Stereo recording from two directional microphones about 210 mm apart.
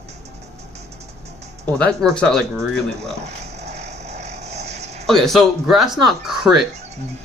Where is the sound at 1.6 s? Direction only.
5° left (ahead or behind).